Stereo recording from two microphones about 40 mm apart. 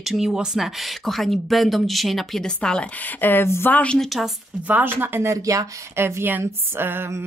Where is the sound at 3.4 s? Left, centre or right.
Left.